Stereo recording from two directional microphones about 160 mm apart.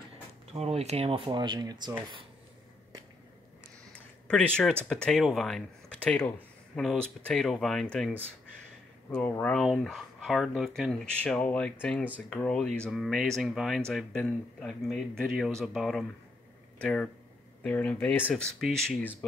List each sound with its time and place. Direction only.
0.5 s speech: 40° right (ahead or behind)
3.9 s a sound: 5° left (ahead or behind)
4.8 s speech: 5° left (ahead or behind)
9.1 s speech: 10° left (ahead or behind)